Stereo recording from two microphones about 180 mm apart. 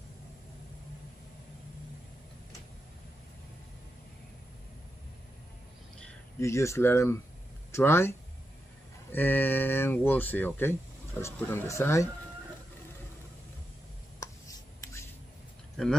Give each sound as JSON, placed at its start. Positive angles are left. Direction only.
{"t": 6.4, "sound": "speech", "side_deg": 15}
{"t": 9.1, "sound": "speech", "side_deg": 10}